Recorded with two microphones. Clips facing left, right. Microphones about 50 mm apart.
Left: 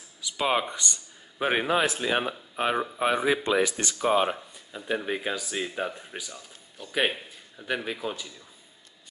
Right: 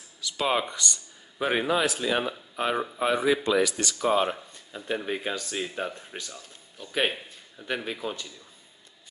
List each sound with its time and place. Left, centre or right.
0.2 s speech: centre
0.7 s a man's voice: left; by 8.3 s centre